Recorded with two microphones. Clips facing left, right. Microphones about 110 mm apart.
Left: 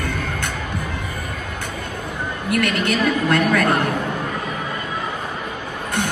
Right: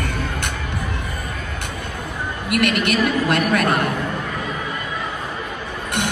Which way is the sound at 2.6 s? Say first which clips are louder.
Right 2 dB; 15° right (ahead or behind).